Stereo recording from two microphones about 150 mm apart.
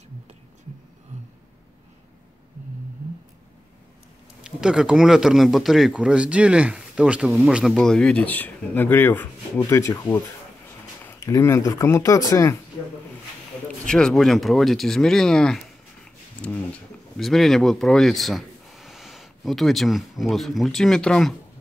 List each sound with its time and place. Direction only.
4.4 s speech: 5° right (ahead or behind); by 12.5 s 20° left (ahead or behind)
13.8 s speech: 5° left (ahead or behind)